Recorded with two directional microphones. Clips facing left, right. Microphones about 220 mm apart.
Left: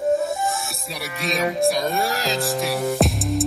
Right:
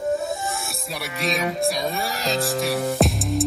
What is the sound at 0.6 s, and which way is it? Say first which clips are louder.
Music: even; centre (ahead or behind).